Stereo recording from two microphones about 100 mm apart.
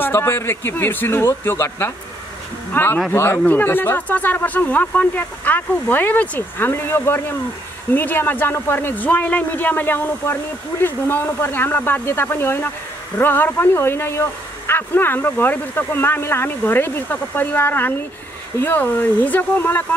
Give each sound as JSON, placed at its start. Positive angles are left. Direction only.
{"t": 0.0, "sound": "speech", "side_deg": 20}